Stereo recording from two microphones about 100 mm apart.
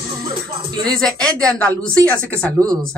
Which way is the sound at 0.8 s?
5° left (ahead or behind).